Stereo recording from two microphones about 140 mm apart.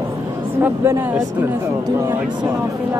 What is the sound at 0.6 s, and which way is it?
Speech, 15° right (ahead or behind).